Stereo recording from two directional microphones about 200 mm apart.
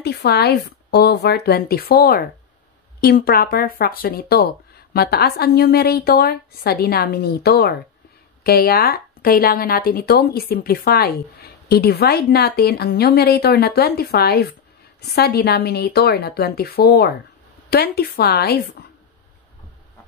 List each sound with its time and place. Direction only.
0.0 s a woman's voice: 55° left (ahead or behind)